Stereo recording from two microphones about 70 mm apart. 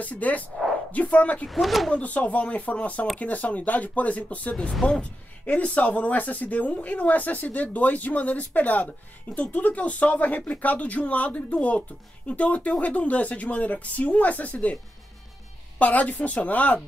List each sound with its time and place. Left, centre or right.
0.0 s speech: left
1.5 s speech: centre
1.9 s speech: left
4.6 s speech: centre
5.4 s speech: left
15.8 s speech: left